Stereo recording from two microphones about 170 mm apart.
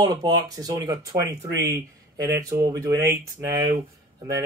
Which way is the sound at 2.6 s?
20° right (ahead or behind).